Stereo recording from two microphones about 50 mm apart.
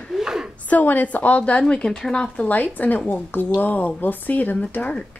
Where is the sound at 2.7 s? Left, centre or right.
Left.